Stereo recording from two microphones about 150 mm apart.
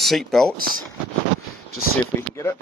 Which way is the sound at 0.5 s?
75° right (ahead or behind).